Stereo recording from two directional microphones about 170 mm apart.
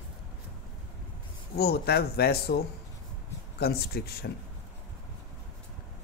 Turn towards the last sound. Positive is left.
turn(degrees=65)  # may be behind; listen again after turning